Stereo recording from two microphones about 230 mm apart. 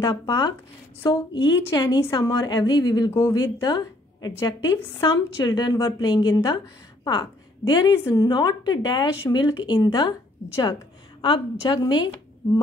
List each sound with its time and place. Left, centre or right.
0.0 s a woman's voice: centre